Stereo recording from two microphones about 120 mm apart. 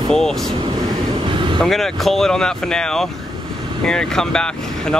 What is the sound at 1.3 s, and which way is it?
Vehicle, 40° right (ahead or behind).